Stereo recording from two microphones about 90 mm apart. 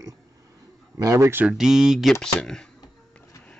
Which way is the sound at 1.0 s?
30° right (ahead or behind).